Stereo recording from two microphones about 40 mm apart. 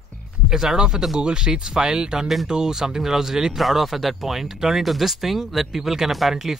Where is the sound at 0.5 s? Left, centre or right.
Centre.